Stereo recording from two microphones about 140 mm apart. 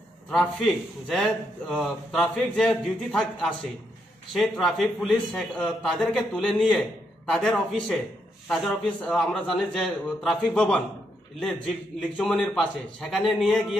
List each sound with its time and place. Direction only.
1.0 s a man's voice: 5° left (ahead or behind)